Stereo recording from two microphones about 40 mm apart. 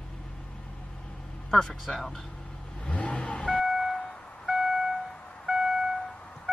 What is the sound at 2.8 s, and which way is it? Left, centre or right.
Vehicle, left.